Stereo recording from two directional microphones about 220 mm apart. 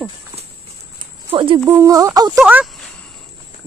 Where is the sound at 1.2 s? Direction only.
25° right (ahead or behind).